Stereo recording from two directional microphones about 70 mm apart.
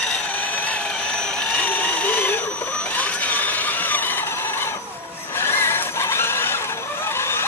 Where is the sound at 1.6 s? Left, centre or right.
Left.